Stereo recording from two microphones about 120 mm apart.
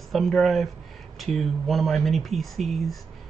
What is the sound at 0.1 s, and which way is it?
Speech, centre (ahead or behind).